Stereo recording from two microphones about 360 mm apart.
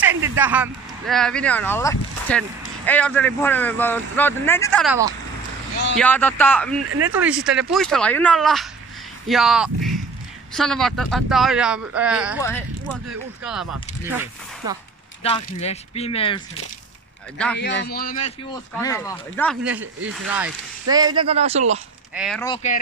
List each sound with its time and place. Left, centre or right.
0.0 s speech: centre
5.9 s speech: centre
15.2 s speech: centre
17.6 s a man's voice: left
18.7 s speech: centre
22.1 s speech: centre
22.4 s speech: centre